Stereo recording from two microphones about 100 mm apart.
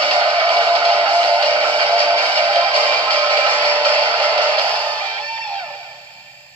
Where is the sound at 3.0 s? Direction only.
15° left (ahead or behind).